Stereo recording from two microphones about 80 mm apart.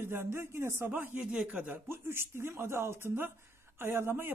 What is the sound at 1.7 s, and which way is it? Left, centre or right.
Speech, right.